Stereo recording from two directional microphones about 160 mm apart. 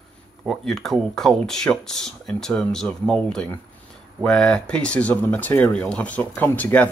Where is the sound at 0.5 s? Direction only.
Centre (ahead or behind).